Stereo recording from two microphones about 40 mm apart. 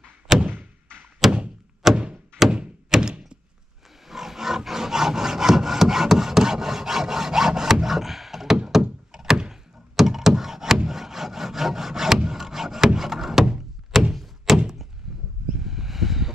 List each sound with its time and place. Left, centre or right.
0.3 s a sound: centre
1.2 s thunk: centre
4.1 s wood: centre
9.1 s door: centre
10.9 s wood: centre
14.1 s thunk: centre
15.1 s a sound: centre